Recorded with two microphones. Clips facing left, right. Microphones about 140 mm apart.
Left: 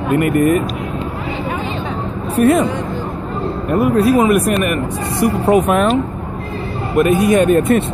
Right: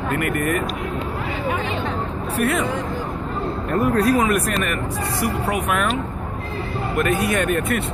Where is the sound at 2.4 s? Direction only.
25° left (ahead or behind).